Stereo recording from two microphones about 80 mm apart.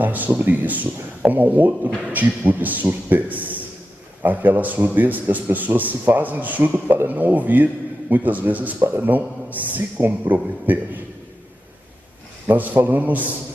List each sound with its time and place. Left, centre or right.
0.0 s a man's voice: right
12.4 s a man's voice: right